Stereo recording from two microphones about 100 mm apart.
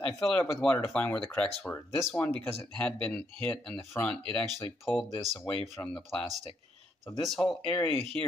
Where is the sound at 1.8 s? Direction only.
25° left (ahead or behind).